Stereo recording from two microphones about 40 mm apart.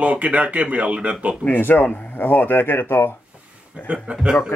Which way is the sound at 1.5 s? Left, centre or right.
Left.